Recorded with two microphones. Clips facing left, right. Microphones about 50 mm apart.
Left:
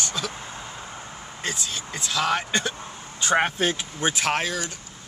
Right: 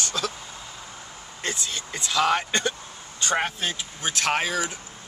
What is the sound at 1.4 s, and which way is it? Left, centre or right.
Speech, centre.